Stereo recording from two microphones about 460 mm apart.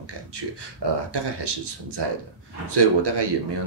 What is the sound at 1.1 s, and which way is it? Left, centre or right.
Speech, right.